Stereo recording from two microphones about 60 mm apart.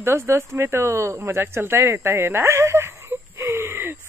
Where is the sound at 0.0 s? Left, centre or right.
Right.